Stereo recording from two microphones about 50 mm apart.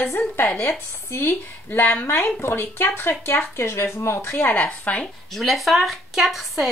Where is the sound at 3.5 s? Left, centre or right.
Left.